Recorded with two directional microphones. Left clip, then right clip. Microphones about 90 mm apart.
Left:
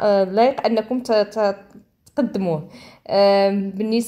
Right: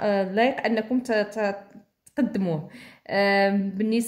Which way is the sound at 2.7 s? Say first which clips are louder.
Left 8 dB; 20° left (ahead or behind).